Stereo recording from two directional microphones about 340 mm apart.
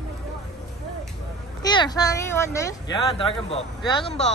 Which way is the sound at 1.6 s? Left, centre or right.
Centre.